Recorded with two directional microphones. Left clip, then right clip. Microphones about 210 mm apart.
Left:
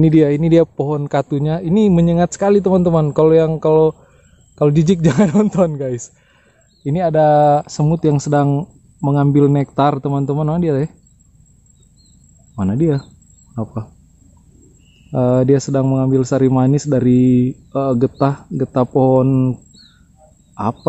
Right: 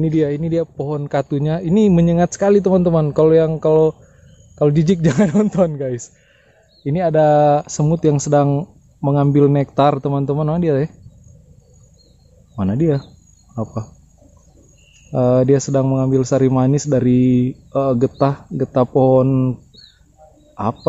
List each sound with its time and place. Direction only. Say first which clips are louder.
0.0 s speech: left 5 dB; 35° left (ahead or behind)
0.7 s a man's voice: left 2 dB; 15° left (ahead or behind); by 10.9 s centre (ahead or behind)
12.5 s speech: left 1 dB; centre (ahead or behind)
15.0 s speech: even; 5° left (ahead or behind)